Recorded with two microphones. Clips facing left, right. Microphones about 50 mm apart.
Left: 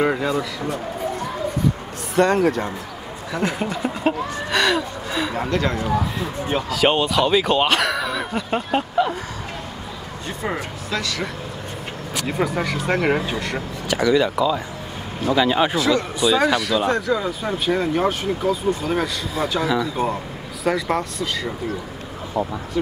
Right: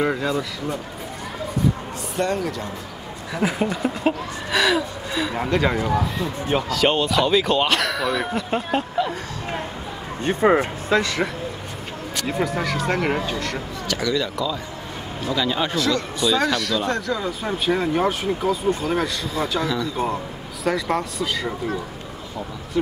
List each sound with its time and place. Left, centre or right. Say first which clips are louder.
0.0 s speech: left 2 dB; centre
2.1 s speech: left 6 dB; left
2.4 s a man's voice: left 8 dB; left
3.3 s speech: right 1 dB; centre
5.9 s speech: even; centre
10.2 s speech: right 10 dB; right
12.2 s speech: left 1 dB; centre
13.9 s speech: left 6 dB; left; by 19.7 s centre
19.7 s speech: left 3 dB; centre
20.6 s speech: left 1 dB; centre